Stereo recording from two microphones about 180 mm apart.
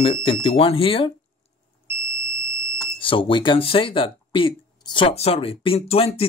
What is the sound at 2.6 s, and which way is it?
Speech, 30° left (ahead or behind).